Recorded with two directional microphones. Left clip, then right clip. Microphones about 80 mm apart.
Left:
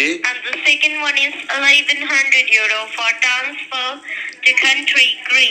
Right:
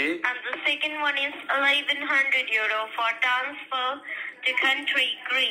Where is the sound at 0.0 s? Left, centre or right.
Left.